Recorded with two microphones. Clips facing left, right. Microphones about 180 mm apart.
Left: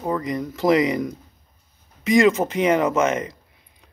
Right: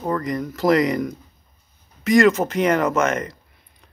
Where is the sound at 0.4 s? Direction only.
15° left (ahead or behind).